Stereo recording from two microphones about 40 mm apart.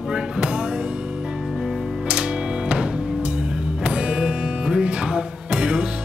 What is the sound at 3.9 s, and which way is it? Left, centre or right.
Music, right.